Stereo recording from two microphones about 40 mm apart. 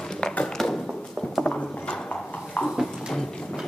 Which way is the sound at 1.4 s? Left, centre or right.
Left.